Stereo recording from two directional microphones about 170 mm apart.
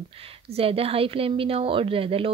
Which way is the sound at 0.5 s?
35° right (ahead or behind).